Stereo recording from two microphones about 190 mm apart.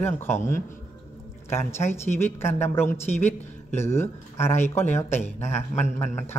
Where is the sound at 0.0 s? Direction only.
10° left (ahead or behind).